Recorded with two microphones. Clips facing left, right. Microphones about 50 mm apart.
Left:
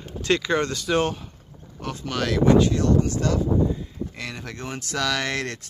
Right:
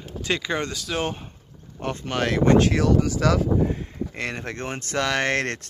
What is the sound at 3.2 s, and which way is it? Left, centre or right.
Speech, right.